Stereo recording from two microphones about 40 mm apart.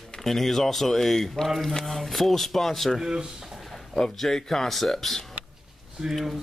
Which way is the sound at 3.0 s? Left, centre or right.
Centre.